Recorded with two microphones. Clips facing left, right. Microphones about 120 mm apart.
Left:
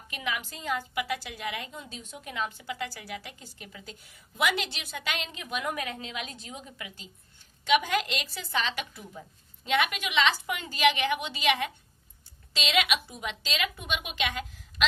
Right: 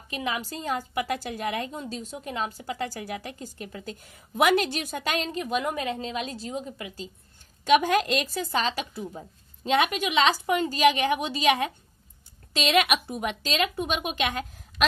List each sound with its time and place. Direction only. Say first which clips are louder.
0.1 s a woman's voice: right 4 dB; 35° right (ahead or behind)
7.6 s a woman's voice: right 5 dB; 45° right (ahead or behind)